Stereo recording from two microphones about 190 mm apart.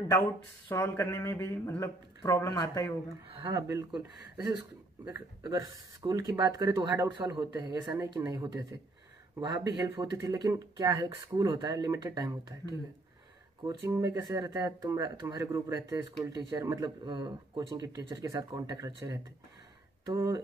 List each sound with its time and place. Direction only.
0.7 s speech: 15° left (ahead or behind)
3.3 s speech: 30° right (ahead or behind)
3.5 s speech: 15° right (ahead or behind)